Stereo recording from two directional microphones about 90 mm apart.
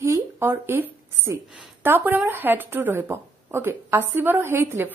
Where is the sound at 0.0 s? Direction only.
30° right (ahead or behind).